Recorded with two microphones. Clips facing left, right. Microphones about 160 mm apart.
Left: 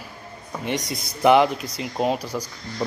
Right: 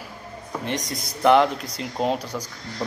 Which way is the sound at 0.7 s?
5° left (ahead or behind).